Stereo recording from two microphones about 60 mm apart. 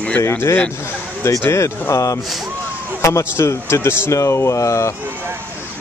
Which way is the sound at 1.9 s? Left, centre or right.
Left.